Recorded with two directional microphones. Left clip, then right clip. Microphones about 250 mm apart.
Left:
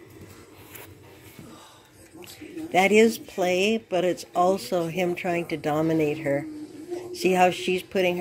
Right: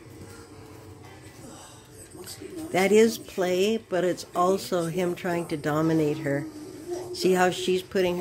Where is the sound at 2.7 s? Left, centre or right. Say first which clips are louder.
Left 2 dB; centre.